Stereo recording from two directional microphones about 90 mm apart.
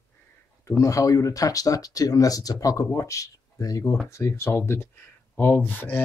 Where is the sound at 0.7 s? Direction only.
35° left (ahead or behind).